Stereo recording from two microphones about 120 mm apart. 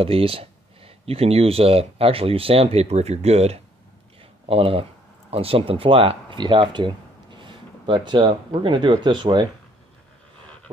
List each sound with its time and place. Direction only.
0.0 s speech: 50° right (ahead or behind)
4.5 s speech: 50° right (ahead or behind)